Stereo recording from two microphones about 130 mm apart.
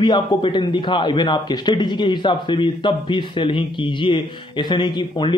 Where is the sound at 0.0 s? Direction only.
35° left (ahead or behind).